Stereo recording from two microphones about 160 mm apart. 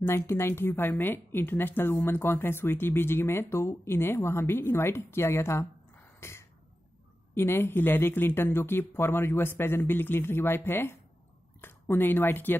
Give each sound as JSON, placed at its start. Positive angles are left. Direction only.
{"t": 0.0, "sound": "a woman's voice", "side_deg": 15}
{"t": 6.1, "sound": "a sound", "side_deg": 15}
{"t": 7.3, "sound": "a woman's voice", "side_deg": 15}